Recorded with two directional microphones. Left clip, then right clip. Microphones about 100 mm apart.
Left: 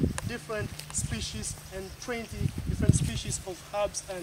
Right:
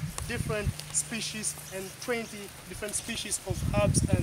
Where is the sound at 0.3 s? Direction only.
10° right (ahead or behind).